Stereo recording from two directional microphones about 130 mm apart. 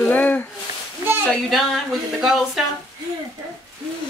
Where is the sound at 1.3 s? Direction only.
Centre (ahead or behind).